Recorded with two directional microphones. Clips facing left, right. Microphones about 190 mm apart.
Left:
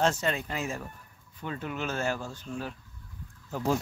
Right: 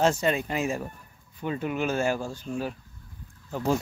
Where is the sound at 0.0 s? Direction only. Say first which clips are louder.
Right 4 dB; 15° right (ahead or behind).